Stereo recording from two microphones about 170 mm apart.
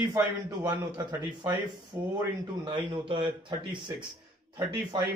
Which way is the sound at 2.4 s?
30° right (ahead or behind).